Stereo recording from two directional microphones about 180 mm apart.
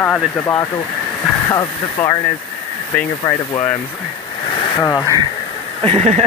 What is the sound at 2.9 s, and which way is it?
Speech, 5° left (ahead or behind).